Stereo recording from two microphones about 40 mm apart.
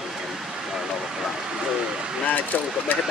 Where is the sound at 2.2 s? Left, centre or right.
Left.